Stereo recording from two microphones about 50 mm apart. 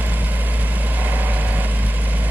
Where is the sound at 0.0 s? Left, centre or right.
Right.